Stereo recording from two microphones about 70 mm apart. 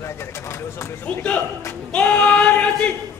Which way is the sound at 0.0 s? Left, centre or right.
Left.